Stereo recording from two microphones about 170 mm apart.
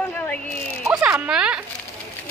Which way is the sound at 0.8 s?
5° right (ahead or behind).